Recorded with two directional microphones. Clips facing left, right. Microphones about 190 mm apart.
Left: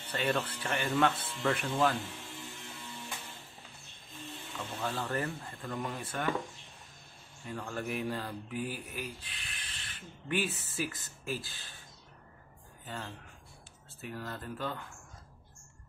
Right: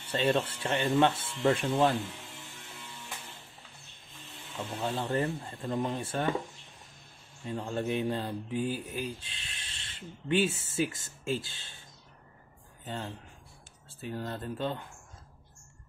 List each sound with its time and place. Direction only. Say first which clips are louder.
0.1 s speech: right 4 dB; 25° right (ahead or behind)
4.8 s speech: right 4 dB; 30° right (ahead or behind)
7.4 s speech: right 5 dB; 25° right (ahead or behind)
12.8 s speech: right 4 dB; 30° right (ahead or behind)